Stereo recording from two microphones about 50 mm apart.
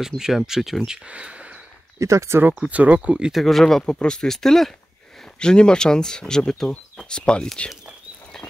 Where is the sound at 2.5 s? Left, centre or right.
Right.